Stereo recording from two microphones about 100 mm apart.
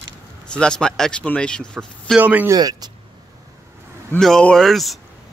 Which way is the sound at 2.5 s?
40° right (ahead or behind).